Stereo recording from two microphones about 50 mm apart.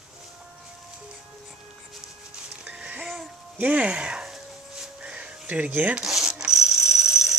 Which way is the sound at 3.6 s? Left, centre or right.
Right.